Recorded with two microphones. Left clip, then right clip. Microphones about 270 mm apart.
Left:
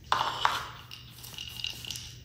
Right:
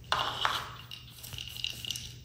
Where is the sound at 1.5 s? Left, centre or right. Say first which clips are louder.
Right 1 dB; centre.